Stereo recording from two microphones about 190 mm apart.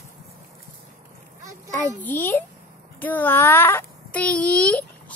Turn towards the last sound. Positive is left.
turn(degrees=5)  # may be behind; listen again after turning